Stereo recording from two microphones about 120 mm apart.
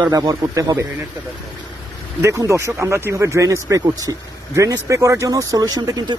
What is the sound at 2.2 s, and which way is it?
Speech, 25° right (ahead or behind).